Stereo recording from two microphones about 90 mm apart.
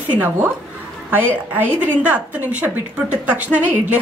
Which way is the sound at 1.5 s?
20° right (ahead or behind).